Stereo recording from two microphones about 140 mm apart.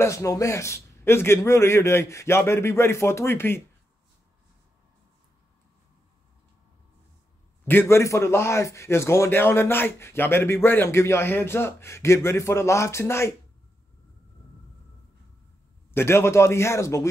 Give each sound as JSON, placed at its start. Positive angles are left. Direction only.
{"t": 0.0, "sound": "a man's voice", "side_deg": 20}
{"t": 7.6, "sound": "a man's voice", "side_deg": 15}
{"t": 15.9, "sound": "a man's voice", "side_deg": 15}